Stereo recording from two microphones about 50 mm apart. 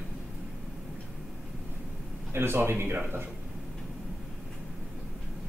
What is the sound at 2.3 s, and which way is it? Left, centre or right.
Speech, right.